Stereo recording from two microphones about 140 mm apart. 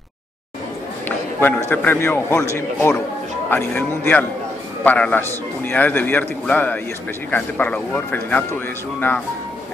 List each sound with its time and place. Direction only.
1.0 s a man's voice: 15° left (ahead or behind)